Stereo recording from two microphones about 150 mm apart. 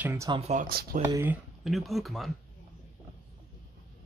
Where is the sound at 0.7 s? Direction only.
90° right.